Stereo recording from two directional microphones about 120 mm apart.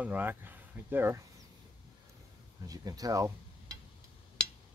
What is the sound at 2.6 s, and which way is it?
Speech, 30° right (ahead or behind).